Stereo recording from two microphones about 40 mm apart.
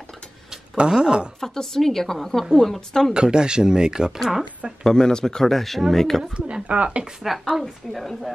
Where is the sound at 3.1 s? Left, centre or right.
Right.